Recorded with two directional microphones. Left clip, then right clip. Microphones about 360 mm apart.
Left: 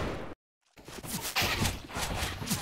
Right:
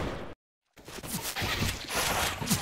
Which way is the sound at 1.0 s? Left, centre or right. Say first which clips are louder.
Right 1 dB; centre.